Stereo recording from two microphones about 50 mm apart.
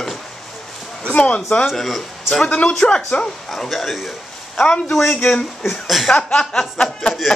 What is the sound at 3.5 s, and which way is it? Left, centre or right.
Speech, centre.